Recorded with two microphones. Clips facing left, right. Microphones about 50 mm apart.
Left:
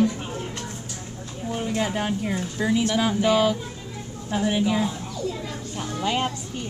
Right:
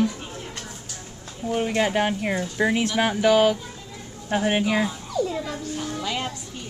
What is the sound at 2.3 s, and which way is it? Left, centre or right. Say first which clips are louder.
Speech: right 3 dB; right.